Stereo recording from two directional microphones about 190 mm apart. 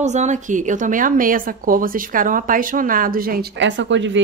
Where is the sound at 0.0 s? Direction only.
35° right (ahead or behind).